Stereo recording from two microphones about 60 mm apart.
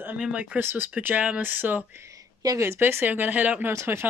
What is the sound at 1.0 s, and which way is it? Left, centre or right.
Speech, right.